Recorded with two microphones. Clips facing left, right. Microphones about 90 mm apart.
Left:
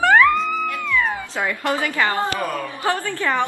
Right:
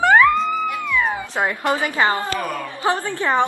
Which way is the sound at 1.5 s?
20° right (ahead or behind).